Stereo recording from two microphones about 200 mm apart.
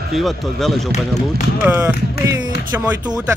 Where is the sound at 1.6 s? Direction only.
10° right (ahead or behind).